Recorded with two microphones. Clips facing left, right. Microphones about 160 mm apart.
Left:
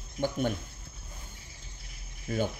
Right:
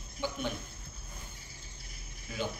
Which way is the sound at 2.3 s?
50° left (ahead or behind).